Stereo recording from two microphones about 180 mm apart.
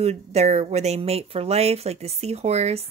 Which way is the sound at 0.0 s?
35° right (ahead or behind).